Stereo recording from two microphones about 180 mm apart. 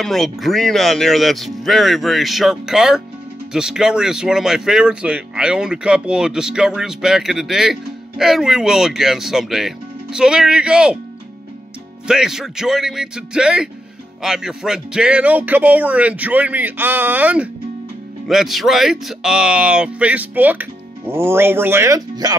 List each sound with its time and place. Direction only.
0.0 s speech: centre (ahead or behind)
12.1 s speech: 5° right (ahead or behind); by 22.4 s 20° right (ahead or behind)